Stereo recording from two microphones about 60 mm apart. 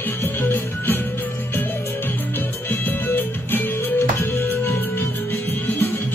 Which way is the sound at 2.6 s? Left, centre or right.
Left.